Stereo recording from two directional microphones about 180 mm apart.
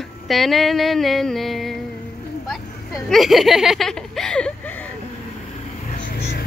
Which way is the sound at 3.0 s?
Centre (ahead or behind).